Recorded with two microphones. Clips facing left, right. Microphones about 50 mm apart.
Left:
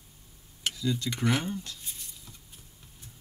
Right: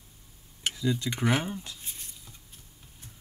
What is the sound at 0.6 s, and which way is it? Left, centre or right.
Speech, centre.